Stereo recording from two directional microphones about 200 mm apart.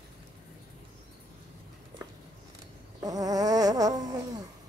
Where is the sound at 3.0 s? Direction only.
20° right (ahead or behind).